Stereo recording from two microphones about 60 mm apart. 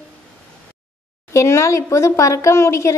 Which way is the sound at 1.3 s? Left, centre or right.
Left.